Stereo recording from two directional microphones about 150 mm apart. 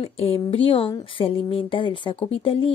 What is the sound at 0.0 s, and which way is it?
Speech, 40° left (ahead or behind).